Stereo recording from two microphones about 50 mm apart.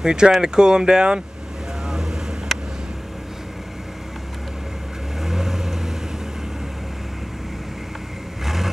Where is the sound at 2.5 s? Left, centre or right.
Centre.